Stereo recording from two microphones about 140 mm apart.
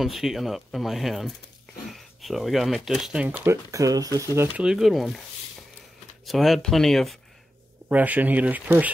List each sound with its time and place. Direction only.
0.0 s speech: centre (ahead or behind)
3.4 s speech: 25° right (ahead or behind)
4.6 s speech: 5° right (ahead or behind)
6.2 s speech: centre (ahead or behind)
7.9 s speech: 10° right (ahead or behind)